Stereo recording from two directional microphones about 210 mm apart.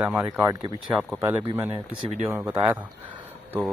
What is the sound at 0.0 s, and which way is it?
Speech, 5° right (ahead or behind).